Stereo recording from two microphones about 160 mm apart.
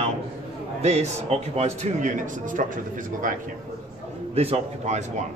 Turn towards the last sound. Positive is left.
turn(degrees=-45)  # may be behind; listen again after turning